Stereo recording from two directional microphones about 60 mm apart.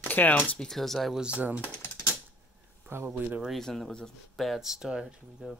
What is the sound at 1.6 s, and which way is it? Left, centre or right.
Typewriter, left.